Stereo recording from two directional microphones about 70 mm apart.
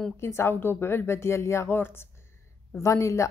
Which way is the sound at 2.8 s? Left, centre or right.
Left.